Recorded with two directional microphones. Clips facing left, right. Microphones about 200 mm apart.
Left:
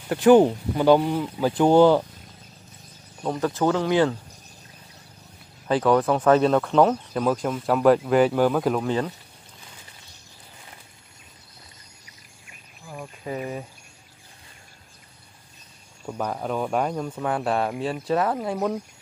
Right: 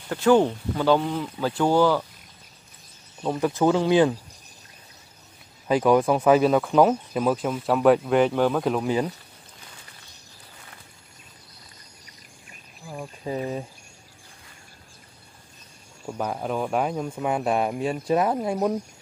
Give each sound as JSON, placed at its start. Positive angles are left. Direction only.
{"t": 0.1, "sound": "speech", "side_deg": 15}
{"t": 3.3, "sound": "speech", "side_deg": -10}
{"t": 5.7, "sound": "speech", "side_deg": -10}
{"t": 8.8, "sound": "speech", "side_deg": -10}
{"t": 12.8, "sound": "a sound", "side_deg": 0}
{"t": 13.2, "sound": "speech", "side_deg": -25}
{"t": 16.1, "sound": "speech", "side_deg": -5}